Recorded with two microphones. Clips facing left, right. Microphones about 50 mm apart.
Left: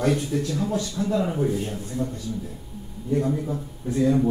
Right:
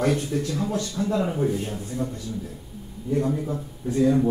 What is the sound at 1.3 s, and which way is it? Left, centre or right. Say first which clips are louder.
Speech: even; centre.